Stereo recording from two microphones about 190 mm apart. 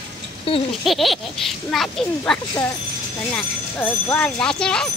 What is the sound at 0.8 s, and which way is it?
Speech, centre (ahead or behind).